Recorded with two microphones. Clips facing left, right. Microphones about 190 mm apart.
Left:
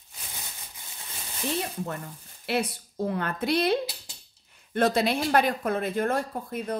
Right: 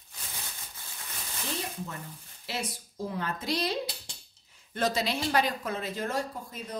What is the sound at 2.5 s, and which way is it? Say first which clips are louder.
Speech: left 8 dB; 60° left (ahead or behind).